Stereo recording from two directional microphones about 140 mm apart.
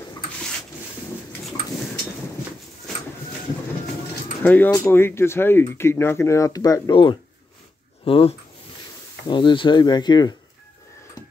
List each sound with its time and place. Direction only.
4.4 s speech: 10° left (ahead or behind); by 10.3 s 30° left (ahead or behind)